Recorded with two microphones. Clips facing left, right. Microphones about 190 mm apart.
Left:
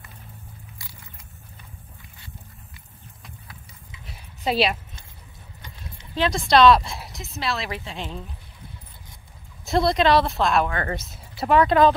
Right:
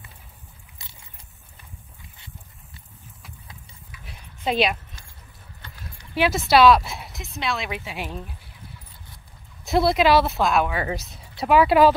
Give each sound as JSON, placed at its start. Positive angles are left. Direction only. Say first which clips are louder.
{"t": 4.5, "sound": "a woman's voice", "louder": "even", "side_deg": 0}
{"t": 5.6, "sound": "keys jangling", "louder": "even", "side_deg": 20}
{"t": 6.1, "sound": "a woman's voice", "louder": "right 1 dB", "side_deg": -5}
{"t": 9.7, "sound": "a woman's voice", "louder": "right 1 dB", "side_deg": -5}